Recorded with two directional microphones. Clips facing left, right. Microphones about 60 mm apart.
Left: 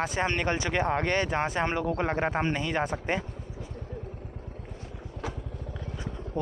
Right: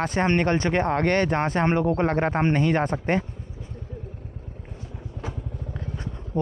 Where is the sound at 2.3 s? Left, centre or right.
Right.